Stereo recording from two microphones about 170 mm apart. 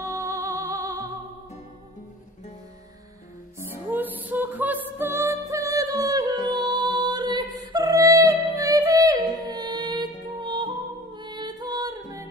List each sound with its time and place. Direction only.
0.0 s music: 20° right (ahead or behind)
3.9 s music: 10° right (ahead or behind)